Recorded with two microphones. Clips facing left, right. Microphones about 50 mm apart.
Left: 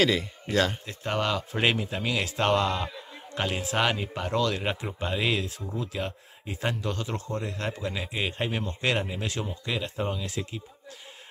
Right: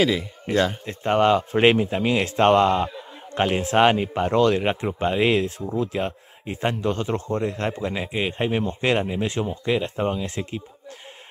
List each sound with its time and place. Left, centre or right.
0.0 s speech: centre
0.8 s speech: right